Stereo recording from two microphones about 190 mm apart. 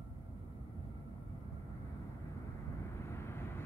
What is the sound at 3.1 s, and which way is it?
Vehicle, 15° left (ahead or behind).